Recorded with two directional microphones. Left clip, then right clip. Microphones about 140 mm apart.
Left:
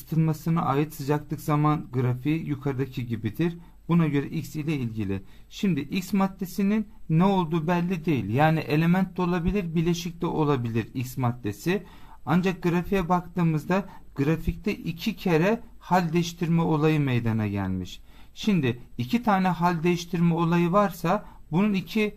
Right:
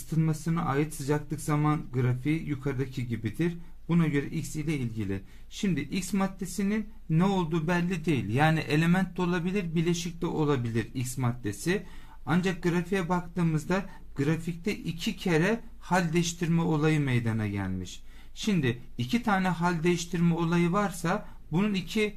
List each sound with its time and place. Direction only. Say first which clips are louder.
0.1 s speech: left 4 dB; 45° left (ahead or behind)